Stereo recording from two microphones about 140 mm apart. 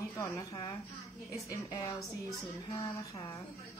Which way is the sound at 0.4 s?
30° left (ahead or behind).